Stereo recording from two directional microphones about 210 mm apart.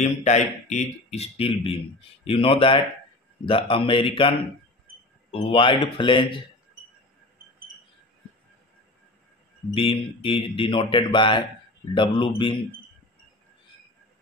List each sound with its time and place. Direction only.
0.0 s speech: 35° left (ahead or behind)
9.8 s speech: 25° left (ahead or behind)